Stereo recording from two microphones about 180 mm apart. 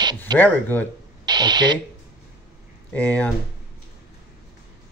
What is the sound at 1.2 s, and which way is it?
Speech, 20° right (ahead or behind).